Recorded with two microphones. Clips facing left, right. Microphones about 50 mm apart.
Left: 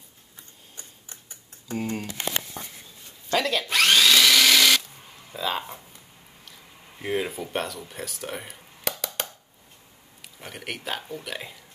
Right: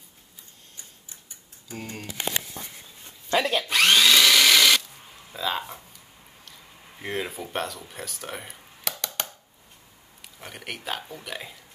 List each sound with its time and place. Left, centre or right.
1.7 s speech: centre
2.6 s a sound: left
3.3 s speech: centre
3.6 s drill: centre
5.3 s a sound: centre
7.0 s speech: centre
10.4 s speech: centre